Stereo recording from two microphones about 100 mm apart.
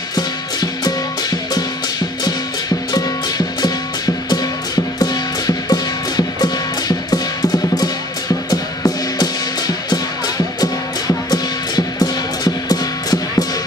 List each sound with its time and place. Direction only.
0.1 s music: 40° left (ahead or behind)
2.9 s music: 40° left (ahead or behind)
8.5 s music: 40° left (ahead or behind)